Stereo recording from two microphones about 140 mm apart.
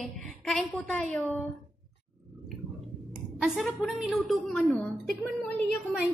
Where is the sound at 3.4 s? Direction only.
Centre (ahead or behind).